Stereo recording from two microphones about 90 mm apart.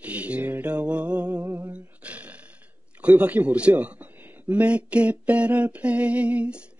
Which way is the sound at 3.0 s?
15° right (ahead or behind).